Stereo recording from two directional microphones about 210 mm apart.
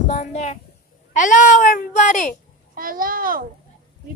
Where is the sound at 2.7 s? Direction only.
40° right (ahead or behind).